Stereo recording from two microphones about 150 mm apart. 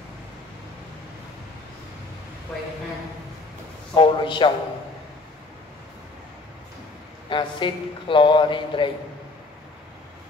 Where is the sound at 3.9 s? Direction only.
35° left (ahead or behind).